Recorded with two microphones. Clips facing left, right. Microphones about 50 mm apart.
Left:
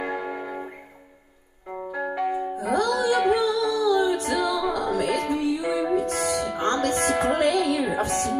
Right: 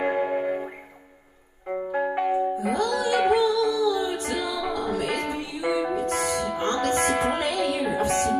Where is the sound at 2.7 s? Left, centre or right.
Left.